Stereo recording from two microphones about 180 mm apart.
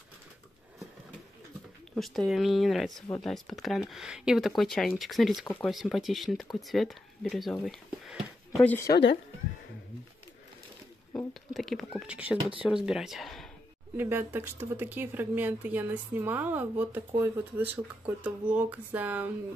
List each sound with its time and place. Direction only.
2.0 s speech: centre (ahead or behind)
8.6 s speech: 15° left (ahead or behind)
8.9 s speech: 65° left (ahead or behind)
11.1 s speech: centre (ahead or behind)
13.9 s speech: 10° right (ahead or behind)